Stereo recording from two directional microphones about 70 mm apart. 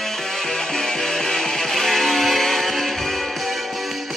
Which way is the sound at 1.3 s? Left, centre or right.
Centre.